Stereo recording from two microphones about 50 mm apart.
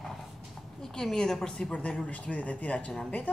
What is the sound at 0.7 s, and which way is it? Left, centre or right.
A woman's voice, centre.